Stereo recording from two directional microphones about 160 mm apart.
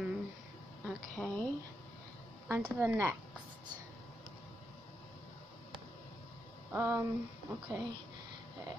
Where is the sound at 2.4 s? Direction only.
10° right (ahead or behind).